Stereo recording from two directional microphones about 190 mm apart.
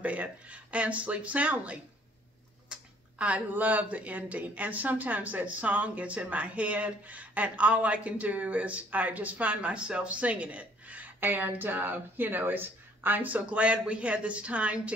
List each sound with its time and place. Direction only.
0.0 s speech: 5° right (ahead or behind)